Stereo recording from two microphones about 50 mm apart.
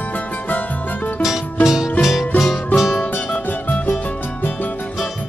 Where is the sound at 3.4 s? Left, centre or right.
Left.